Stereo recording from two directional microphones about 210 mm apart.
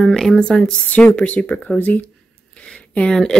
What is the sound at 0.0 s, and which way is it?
A woman's voice, centre (ahead or behind).